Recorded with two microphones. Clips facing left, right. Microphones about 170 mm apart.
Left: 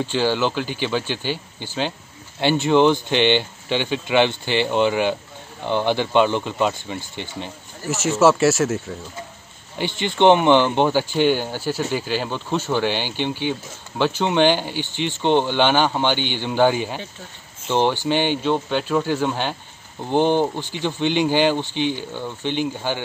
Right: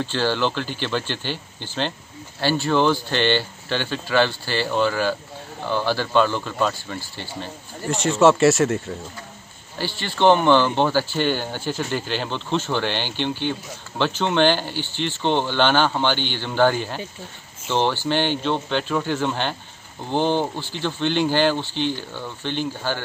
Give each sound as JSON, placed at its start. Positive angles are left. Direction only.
{"t": 0.0, "sound": "speech", "side_deg": 10}
{"t": 7.9, "sound": "speech", "side_deg": 5}
{"t": 9.8, "sound": "speech", "side_deg": 20}